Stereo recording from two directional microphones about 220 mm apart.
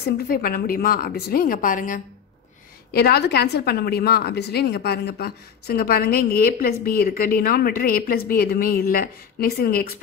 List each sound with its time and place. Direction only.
0.3 s a woman's voice: 45° left (ahead or behind)